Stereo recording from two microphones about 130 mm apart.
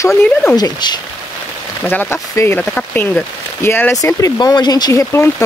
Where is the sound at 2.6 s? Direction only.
10° left (ahead or behind).